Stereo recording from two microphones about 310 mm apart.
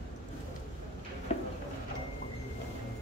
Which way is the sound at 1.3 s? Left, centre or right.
Left.